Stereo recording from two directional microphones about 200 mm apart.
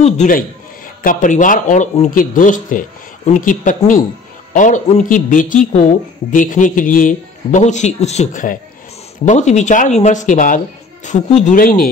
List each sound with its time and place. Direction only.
0.0 s a man's voice: 35° left (ahead or behind)